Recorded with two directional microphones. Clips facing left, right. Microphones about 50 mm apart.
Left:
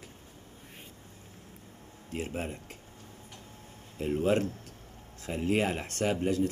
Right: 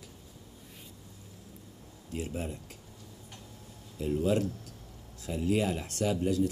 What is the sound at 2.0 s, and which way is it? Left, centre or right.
Speech, left.